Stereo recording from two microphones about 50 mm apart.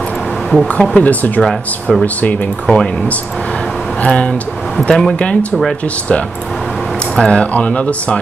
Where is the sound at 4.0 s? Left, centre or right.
Left.